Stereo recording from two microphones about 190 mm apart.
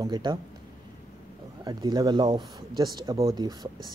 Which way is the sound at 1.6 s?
20° right (ahead or behind).